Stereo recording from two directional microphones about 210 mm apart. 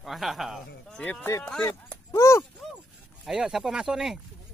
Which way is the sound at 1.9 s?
15° left (ahead or behind).